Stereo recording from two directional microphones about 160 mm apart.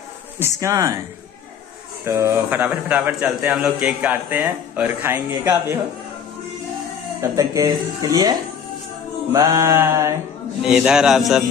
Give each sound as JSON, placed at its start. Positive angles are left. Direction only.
{"t": 0.4, "sound": "speech", "side_deg": -20}
{"t": 2.0, "sound": "a man's voice", "side_deg": -15}
{"t": 7.2, "sound": "a man's voice", "side_deg": -20}
{"t": 10.6, "sound": "speech", "side_deg": -5}